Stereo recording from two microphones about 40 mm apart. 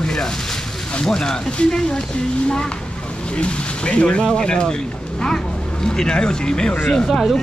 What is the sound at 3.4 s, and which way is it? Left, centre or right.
Speech, left.